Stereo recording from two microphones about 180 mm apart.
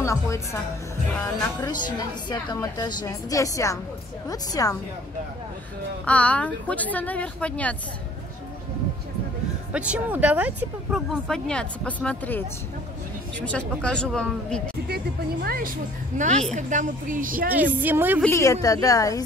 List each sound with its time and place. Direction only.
0.0 s a woman's voice: 15° left (ahead or behind)
6.0 s speech: 10° left (ahead or behind)
9.7 s speech: 5° right (ahead or behind)
13.5 s speech: 5° left (ahead or behind)
15.4 s speech: 55° right (ahead or behind)
17.7 s speech: 10° right (ahead or behind)
18.2 s a woman's voice: 15° left (ahead or behind)